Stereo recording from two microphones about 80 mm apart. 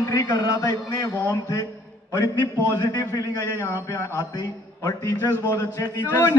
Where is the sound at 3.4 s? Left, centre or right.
Left.